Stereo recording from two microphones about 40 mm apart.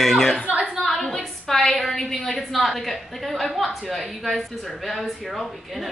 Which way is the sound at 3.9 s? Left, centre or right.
Centre.